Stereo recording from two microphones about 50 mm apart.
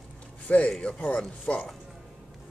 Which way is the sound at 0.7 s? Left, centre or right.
Left.